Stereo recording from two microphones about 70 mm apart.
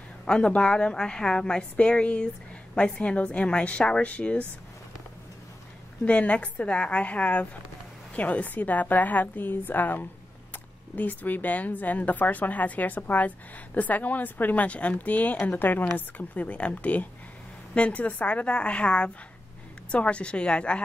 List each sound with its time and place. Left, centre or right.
0.2 s a woman's voice: centre
6.0 s a woman's voice: centre